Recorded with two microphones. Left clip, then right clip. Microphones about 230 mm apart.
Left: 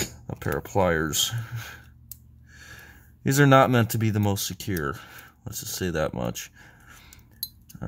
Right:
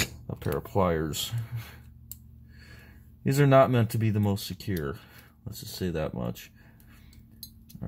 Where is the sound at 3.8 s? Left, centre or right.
Left.